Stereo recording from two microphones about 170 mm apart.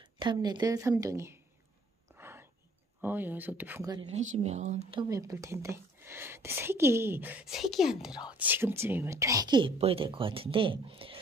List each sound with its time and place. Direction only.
0.0 s a woman's voice: 25° right (ahead or behind)
2.1 s a sound: 15° right (ahead or behind)
3.0 s speech: 10° right (ahead or behind)
4.1 s speech: 45° right (ahead or behind)
5.0 s speech: 20° right (ahead or behind)